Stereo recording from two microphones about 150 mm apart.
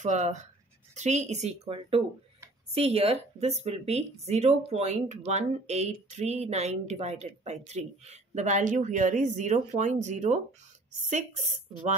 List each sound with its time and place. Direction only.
0.0 s a woman's voice: 50° right (ahead or behind)